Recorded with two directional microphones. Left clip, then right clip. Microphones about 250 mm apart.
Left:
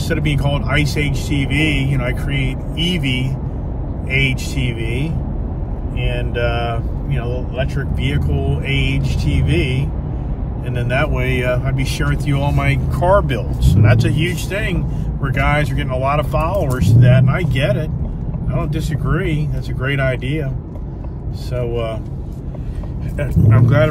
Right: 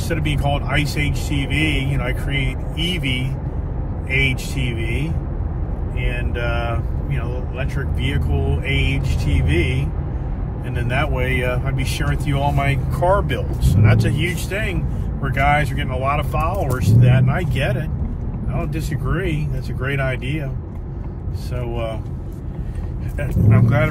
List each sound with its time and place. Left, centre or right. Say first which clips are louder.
0.1 s speech: left 2 dB; centre
10.8 s speech: left 3 dB; centre
21.5 s speech: left 5 dB; centre
23.1 s speech: left 2 dB; centre